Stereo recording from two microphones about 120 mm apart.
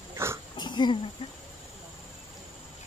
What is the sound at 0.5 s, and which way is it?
Throat clearing, 40° left (ahead or behind).